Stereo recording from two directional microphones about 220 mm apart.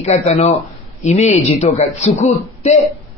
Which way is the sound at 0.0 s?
30° left (ahead or behind).